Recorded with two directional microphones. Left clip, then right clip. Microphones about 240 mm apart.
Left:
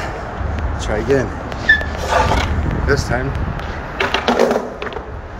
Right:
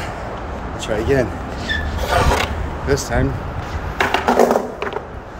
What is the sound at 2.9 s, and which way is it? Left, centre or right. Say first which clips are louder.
Speech: left 1 dB; centre.